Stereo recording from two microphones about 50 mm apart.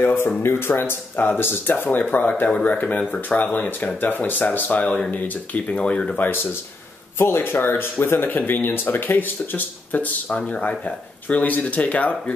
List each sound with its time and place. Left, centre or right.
0.0 s speech: left
5.7 s speech: left
6.1 s speech: left
7.2 s speech: left